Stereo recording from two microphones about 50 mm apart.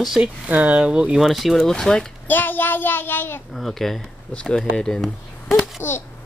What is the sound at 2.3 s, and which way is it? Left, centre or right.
Child singing, left.